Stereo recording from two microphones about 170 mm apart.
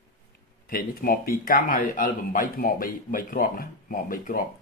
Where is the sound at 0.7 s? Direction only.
60° left (ahead or behind).